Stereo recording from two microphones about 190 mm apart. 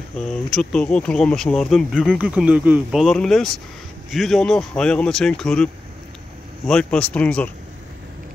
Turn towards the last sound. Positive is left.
turn(degrees=5)  # may be behind; listen again after turning